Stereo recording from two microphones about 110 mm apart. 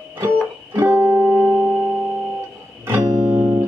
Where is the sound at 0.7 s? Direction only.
15° right (ahead or behind).